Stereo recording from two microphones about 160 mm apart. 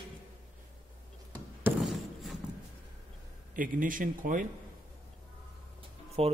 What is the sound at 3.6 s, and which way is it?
Speech, 60° right (ahead or behind).